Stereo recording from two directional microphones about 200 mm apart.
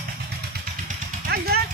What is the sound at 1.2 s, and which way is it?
Speech, 50° right (ahead or behind).